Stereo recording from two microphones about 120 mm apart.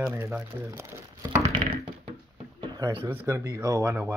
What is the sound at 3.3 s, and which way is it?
Speech, 25° right (ahead or behind).